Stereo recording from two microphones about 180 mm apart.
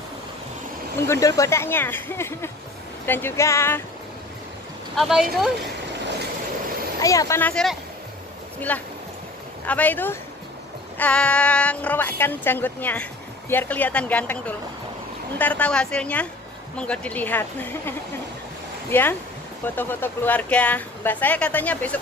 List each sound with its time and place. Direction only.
0.9 s speech: 15° left (ahead or behind)
4.9 s speech: centre (ahead or behind)
7.0 s speech: 20° left (ahead or behind)